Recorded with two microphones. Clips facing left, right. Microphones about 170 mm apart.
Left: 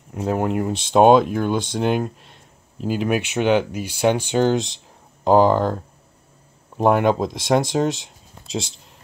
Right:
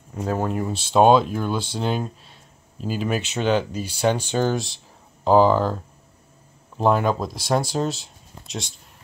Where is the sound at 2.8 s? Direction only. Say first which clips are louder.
Left 3 dB; 65° left (ahead or behind).